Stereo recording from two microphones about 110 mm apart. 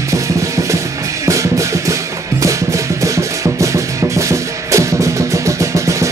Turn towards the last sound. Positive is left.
turn(degrees=-30)  # may be behind; listen again after turning